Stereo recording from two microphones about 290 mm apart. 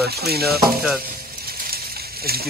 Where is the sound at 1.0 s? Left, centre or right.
Right.